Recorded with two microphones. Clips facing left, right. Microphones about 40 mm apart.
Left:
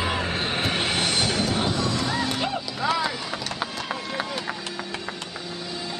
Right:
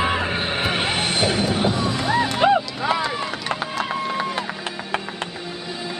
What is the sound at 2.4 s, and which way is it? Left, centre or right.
Music, right.